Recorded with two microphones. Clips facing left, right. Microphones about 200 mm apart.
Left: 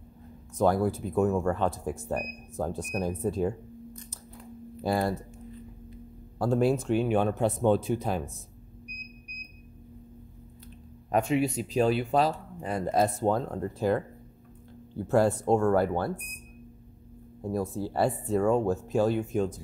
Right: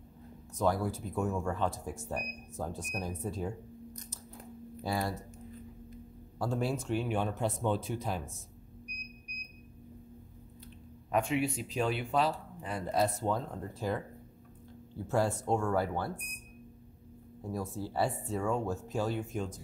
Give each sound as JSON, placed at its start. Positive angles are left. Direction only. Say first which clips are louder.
{"t": 0.6, "sound": "speech", "louder": "left 6 dB", "side_deg": 55}
{"t": 4.8, "sound": "speech", "louder": "left 7 dB", "side_deg": 55}
{"t": 6.3, "sound": "speech", "louder": "left 8 dB", "side_deg": 55}
{"t": 11.1, "sound": "speech", "louder": "left 5 dB", "side_deg": 40}
{"t": 15.0, "sound": "speech", "louder": "left 7 dB", "side_deg": 60}
{"t": 17.5, "sound": "speech", "louder": "left 7 dB", "side_deg": 55}